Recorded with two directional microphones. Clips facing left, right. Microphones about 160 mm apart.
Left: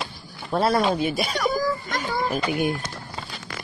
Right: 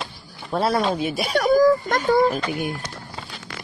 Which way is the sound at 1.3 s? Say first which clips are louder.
Right 8 dB; 50° right (ahead or behind).